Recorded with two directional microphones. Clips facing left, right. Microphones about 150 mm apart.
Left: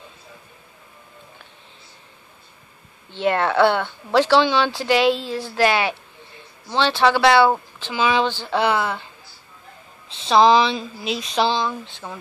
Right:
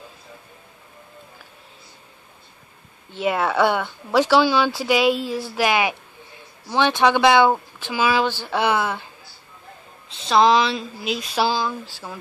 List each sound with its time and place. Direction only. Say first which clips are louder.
3.2 s speech: left 2 dB; 5° right (ahead or behind)
10.0 s speech: left 2 dB; centre (ahead or behind)